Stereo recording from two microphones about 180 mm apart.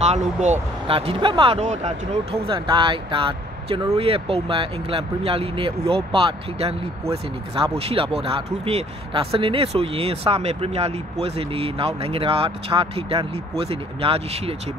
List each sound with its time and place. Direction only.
0.0 s speech: 40° right (ahead or behind)